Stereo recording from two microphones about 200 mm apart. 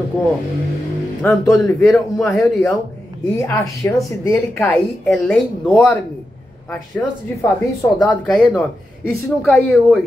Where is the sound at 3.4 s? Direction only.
15° left (ahead or behind).